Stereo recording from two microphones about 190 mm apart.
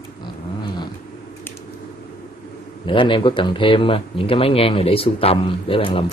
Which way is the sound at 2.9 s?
25° left (ahead or behind).